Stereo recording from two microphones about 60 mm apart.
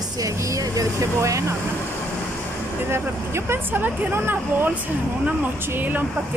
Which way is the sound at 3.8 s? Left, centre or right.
Right.